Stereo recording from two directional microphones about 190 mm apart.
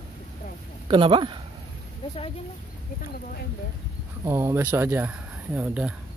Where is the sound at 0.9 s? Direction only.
25° right (ahead or behind).